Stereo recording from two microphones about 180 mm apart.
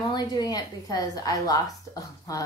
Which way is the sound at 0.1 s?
20° left (ahead or behind).